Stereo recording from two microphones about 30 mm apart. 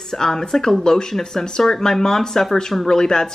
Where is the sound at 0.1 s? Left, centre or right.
Centre.